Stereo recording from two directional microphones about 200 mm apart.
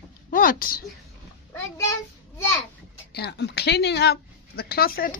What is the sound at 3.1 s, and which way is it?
Speech, 55° left (ahead or behind).